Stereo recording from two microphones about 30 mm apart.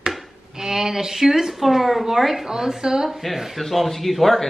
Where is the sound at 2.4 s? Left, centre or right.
Centre.